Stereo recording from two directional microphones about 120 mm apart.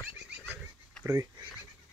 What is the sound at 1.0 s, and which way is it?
Speech, 25° right (ahead or behind).